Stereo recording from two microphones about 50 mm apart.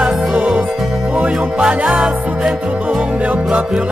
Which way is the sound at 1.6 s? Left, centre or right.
Centre.